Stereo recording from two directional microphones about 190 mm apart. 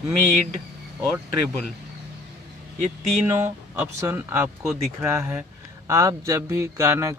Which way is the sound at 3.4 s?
10° right (ahead or behind).